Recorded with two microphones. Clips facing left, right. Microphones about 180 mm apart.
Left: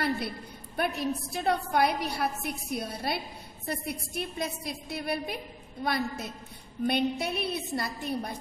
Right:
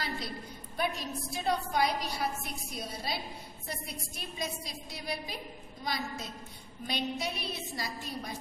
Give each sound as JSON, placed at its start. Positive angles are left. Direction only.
{"t": 0.7, "sound": "a woman's voice", "side_deg": 60}